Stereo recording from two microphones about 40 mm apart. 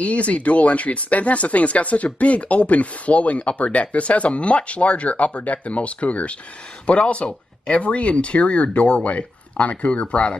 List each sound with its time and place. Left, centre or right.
0.0 s speech: left